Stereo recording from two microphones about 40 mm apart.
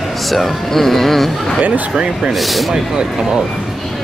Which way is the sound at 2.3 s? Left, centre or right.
Centre.